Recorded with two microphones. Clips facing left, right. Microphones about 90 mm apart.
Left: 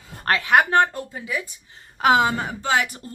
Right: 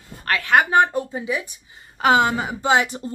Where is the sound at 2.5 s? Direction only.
20° right (ahead or behind).